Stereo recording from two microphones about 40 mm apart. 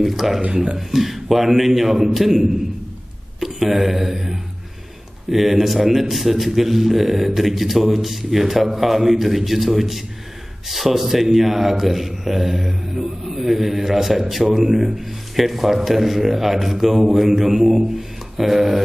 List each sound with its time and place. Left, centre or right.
0.0 s a man's voice: centre
17.1 s mantra: centre